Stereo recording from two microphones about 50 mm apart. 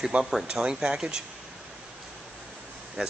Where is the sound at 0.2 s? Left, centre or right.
Centre.